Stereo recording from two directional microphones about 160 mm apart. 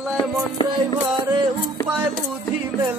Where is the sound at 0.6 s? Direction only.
30° left (ahead or behind).